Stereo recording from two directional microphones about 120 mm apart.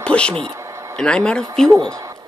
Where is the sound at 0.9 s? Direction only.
5° left (ahead or behind).